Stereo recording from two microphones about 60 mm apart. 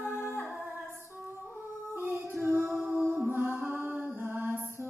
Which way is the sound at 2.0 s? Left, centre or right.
Right.